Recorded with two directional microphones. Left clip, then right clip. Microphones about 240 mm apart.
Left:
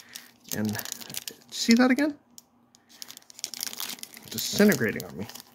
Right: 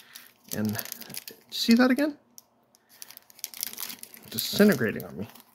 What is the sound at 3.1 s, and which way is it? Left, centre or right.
Crumpling, centre.